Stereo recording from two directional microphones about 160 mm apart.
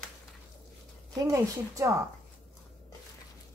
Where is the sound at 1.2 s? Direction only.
20° right (ahead or behind).